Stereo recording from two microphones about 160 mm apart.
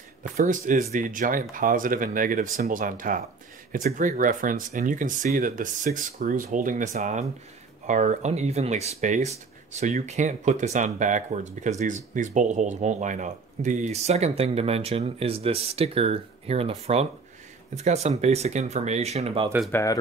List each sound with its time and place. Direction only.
0.4 s speech: 55° right (ahead or behind); by 19.5 s 35° right (ahead or behind)
19.7 s speech: 20° left (ahead or behind)